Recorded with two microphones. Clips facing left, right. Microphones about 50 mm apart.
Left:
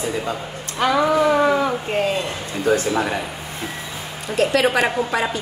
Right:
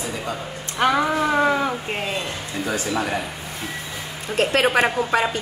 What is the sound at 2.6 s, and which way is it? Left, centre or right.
Speech, left.